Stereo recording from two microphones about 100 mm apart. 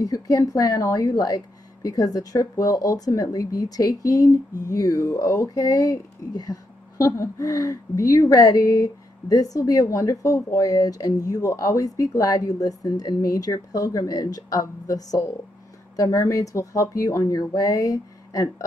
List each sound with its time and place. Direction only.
0.0 s speech: 35° left (ahead or behind)